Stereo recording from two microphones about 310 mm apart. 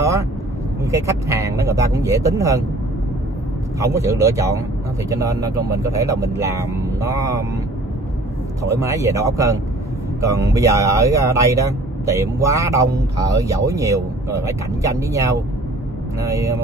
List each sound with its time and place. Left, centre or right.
0.8 s speech: centre
3.8 s speech: centre
8.6 s speech: centre